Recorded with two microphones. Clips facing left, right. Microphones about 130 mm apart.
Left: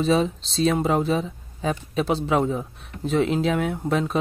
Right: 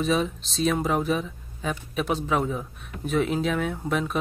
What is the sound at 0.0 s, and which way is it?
Speech, 30° left (ahead or behind).